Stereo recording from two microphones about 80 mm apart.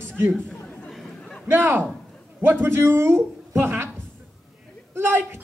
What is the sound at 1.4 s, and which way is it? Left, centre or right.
A man's voice, right.